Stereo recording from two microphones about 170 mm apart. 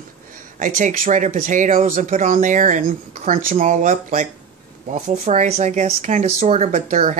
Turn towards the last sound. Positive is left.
turn(degrees=-45)  # may be behind; listen again after turning